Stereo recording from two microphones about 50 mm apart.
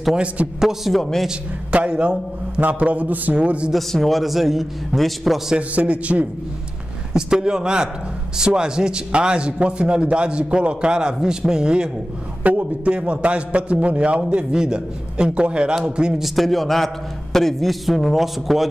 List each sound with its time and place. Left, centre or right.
0.1 s a man's voice: right
0.6 s a man's voice: centre
1.7 s a man's voice: right
3.7 s a man's voice: centre
5.6 s a man's voice: right
7.2 s a man's voice: centre
12.4 s a man's voice: right
16.1 s a man's voice: centre